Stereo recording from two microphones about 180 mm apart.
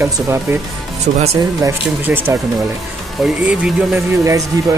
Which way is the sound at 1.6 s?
15° right (ahead or behind).